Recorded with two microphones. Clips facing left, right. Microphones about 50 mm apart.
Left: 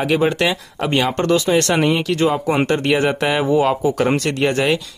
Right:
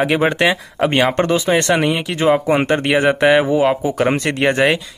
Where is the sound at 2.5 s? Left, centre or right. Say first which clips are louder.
Right 1 dB; centre.